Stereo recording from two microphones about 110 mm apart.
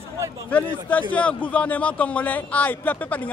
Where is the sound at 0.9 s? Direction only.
15° left (ahead or behind).